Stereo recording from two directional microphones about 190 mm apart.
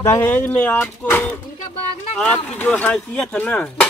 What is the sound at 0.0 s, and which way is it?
Speech, 15° left (ahead or behind).